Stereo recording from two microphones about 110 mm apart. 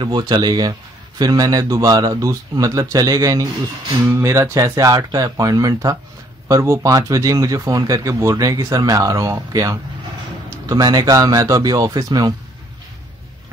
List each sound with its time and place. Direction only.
0.0 s speech: 40° right (ahead or behind)